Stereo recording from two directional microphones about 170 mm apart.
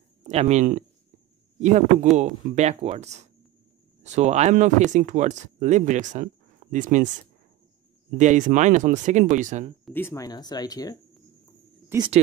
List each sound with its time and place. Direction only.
0.2 s speech: 40° right (ahead or behind)
8.2 s speech: 45° right (ahead or behind)
9.9 s speech: 15° left (ahead or behind)
11.9 s speech: 15° right (ahead or behind)